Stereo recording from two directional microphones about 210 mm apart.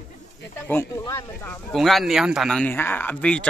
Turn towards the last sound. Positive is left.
turn(degrees=5)  # may be behind; listen again after turning